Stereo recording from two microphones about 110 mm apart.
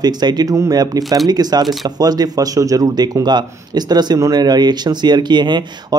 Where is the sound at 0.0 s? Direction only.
40° right (ahead or behind).